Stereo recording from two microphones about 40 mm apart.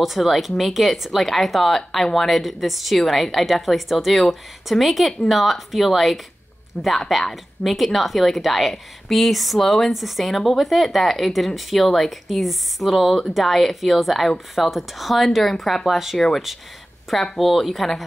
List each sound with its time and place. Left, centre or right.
0.0 s a woman's voice: centre
6.7 s speech: centre
7.1 s a woman's voice: centre
17.1 s a woman's voice: centre